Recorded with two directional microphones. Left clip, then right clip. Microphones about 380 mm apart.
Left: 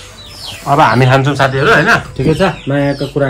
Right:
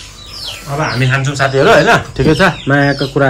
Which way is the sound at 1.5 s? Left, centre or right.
Centre.